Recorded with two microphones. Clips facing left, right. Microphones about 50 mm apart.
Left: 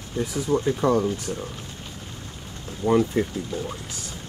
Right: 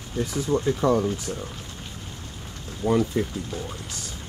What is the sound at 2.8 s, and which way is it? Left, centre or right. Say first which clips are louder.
Speech: left 2 dB; centre.